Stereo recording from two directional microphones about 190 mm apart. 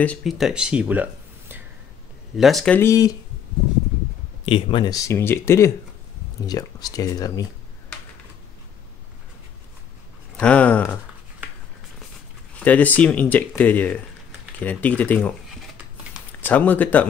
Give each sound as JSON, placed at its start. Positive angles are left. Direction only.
{"t": 0.0, "sound": "speech", "side_deg": 5}
{"t": 2.3, "sound": "speech", "side_deg": 0}
{"t": 4.5, "sound": "speech", "side_deg": 30}
{"t": 10.3, "sound": "speech", "side_deg": 5}
{"t": 12.5, "sound": "speech", "side_deg": 10}
{"t": 16.3, "sound": "speech", "side_deg": 10}